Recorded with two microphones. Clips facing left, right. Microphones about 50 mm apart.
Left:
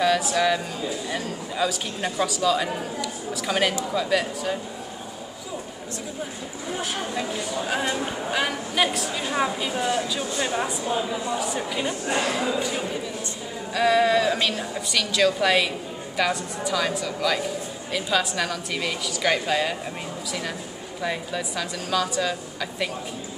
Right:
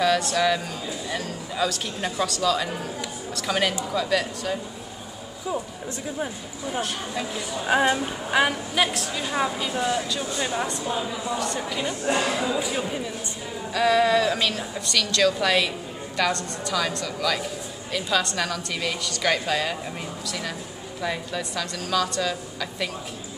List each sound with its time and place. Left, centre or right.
0.0 s a woman's voice: centre
7.6 s a woman's voice: centre
8.7 s speech: centre
12.1 s speech: right
12.5 s a woman's voice: centre
13.7 s a woman's voice: centre